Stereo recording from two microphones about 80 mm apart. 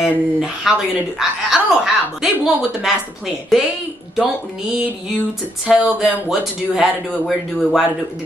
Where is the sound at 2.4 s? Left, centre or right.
Centre.